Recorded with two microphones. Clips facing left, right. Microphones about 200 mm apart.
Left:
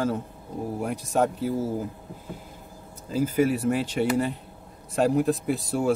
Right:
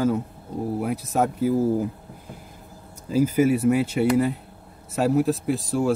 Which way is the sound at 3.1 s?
10° right (ahead or behind).